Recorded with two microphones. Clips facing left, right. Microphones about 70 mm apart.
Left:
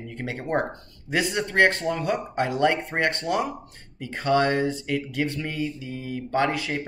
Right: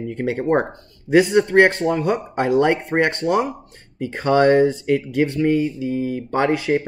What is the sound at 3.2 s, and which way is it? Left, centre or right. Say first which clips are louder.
Speech: right 6 dB; right.